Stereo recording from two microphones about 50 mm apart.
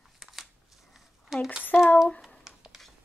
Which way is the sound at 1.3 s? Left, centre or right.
Centre.